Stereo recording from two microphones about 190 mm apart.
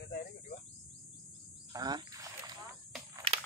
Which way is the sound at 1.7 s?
20° right (ahead or behind).